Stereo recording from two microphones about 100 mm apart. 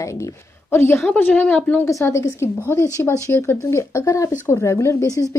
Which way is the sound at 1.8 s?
30° left (ahead or behind).